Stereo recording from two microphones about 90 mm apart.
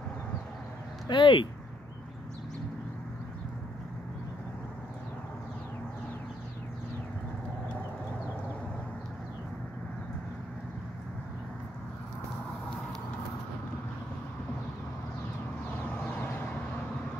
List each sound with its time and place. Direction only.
1.0 s speech: 70° left (ahead or behind)